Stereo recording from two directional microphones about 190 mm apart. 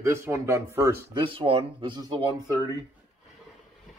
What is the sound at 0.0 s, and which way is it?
Speech, 15° right (ahead or behind).